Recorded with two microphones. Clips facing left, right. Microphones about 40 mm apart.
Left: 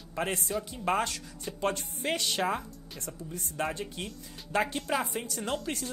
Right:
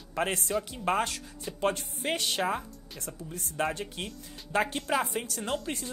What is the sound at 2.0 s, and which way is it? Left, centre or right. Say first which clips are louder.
Speech: even; centre.